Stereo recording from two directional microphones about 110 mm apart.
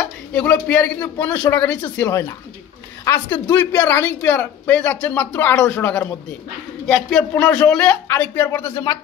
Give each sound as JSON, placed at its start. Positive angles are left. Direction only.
{"t": 0.3, "sound": "speech", "side_deg": 10}
{"t": 2.0, "sound": "speech", "side_deg": 30}
{"t": 6.9, "sound": "speech", "side_deg": 5}
{"t": 8.1, "sound": "speech", "side_deg": 20}